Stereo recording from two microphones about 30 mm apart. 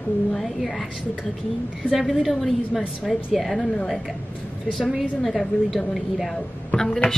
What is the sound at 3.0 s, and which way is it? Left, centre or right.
Speech, centre.